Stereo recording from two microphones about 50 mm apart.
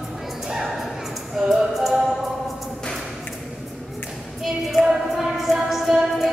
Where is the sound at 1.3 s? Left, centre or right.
Centre.